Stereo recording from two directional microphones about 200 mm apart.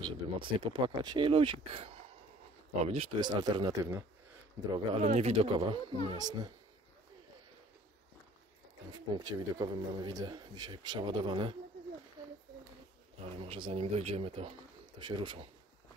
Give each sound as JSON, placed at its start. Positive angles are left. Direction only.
{"t": 0.0, "sound": "speech", "side_deg": -25}
{"t": 5.0, "sound": "speech", "side_deg": -30}
{"t": 9.1, "sound": "speech", "side_deg": -20}
{"t": 13.2, "sound": "speech", "side_deg": -30}